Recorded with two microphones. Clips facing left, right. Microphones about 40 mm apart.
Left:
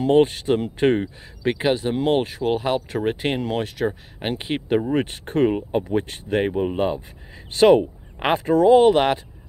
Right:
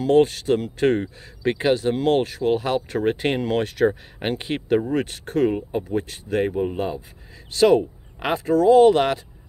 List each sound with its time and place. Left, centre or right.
0.0 s speech: left
1.0 s speech: centre; by 5.6 s left
5.9 s speech: left